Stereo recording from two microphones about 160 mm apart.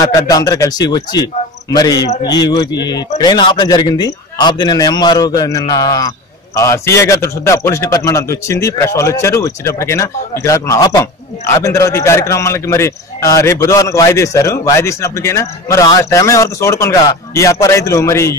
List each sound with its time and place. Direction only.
0.0 s a man's voice: 20° left (ahead or behind)